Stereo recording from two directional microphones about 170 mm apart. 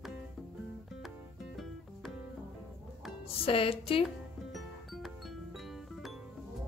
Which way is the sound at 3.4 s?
35° left (ahead or behind).